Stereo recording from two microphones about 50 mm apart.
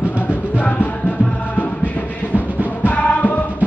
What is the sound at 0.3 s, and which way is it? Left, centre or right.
Music, left.